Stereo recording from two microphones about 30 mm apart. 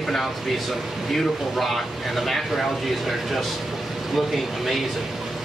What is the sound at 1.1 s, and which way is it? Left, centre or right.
Speech, centre.